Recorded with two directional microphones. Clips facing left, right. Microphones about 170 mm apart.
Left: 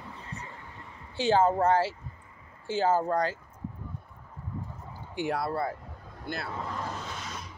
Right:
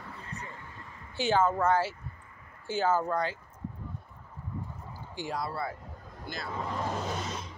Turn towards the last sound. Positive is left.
turn(degrees=55)  # may be behind; listen again after turning